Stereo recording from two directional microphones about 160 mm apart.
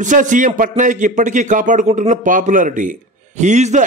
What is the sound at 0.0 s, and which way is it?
A man's voice, 50° right (ahead or behind).